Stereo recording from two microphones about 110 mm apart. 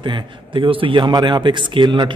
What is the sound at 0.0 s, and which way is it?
A man's voice, 45° right (ahead or behind).